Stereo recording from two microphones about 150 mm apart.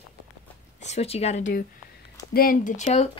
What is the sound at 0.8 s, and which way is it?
Speech, 45° left (ahead or behind).